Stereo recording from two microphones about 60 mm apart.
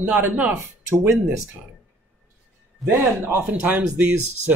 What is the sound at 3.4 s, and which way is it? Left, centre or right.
Speech, right.